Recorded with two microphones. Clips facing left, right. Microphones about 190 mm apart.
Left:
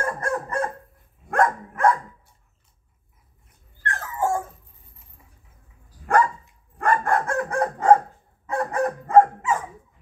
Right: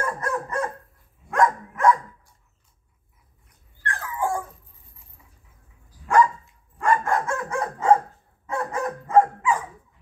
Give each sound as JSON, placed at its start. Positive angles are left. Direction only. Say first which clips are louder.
{"t": 0.0, "sound": "dog", "louder": "left 1 dB", "side_deg": 50}
{"t": 3.8, "sound": "dog", "louder": "left 2 dB", "side_deg": 45}
{"t": 6.0, "sound": "dog", "louder": "right 1 dB", "side_deg": 55}